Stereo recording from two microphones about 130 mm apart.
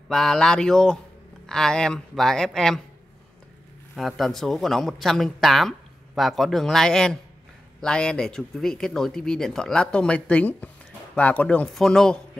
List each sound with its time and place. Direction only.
0.1 s speech: 5° left (ahead or behind)
3.9 s speech: centre (ahead or behind)